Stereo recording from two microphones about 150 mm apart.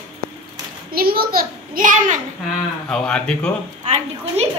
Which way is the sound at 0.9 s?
90° right.